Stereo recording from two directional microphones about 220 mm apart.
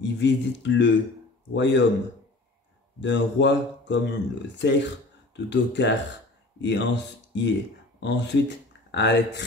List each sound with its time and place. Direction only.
0.0 s speech: 55° left (ahead or behind)
3.0 s speech: 55° left (ahead or behind)